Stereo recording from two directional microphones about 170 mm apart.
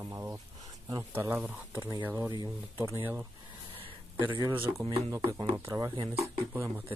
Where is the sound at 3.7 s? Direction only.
30° right (ahead or behind).